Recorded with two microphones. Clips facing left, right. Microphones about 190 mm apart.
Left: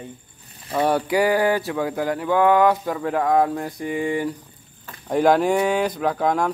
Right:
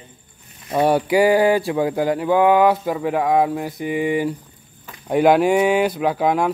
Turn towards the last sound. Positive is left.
turn(degrees=-10)  # may be behind; listen again after turning